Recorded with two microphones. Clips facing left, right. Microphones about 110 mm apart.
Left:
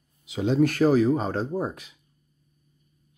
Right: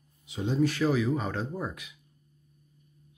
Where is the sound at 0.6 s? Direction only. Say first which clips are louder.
Left 6 dB; 45° left (ahead or behind).